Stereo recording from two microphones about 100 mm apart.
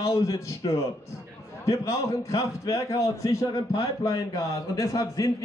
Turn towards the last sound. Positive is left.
turn(degrees=35)  # may be behind; listen again after turning